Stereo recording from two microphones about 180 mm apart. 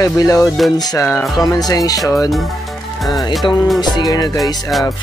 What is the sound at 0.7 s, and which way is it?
Music, 20° left (ahead or behind).